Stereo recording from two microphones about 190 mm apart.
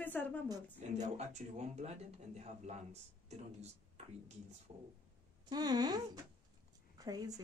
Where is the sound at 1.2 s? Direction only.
35° right (ahead or behind).